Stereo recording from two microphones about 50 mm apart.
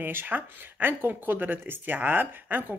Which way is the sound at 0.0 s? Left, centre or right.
Right.